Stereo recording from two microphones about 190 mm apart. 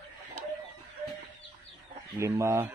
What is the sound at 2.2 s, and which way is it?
Speech, 15° right (ahead or behind).